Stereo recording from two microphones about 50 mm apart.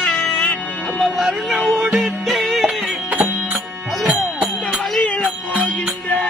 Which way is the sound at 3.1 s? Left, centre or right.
Right.